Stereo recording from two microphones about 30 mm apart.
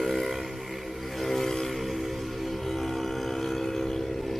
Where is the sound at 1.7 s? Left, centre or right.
Centre.